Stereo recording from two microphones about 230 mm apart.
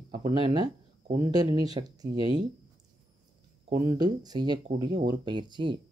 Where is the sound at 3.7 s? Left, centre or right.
Centre.